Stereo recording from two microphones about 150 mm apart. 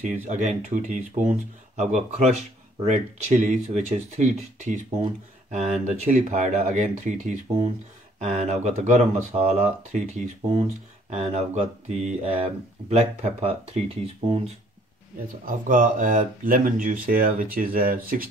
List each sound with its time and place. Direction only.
0.1 s speech: 55° right (ahead or behind)
15.4 s speech: 65° right (ahead or behind)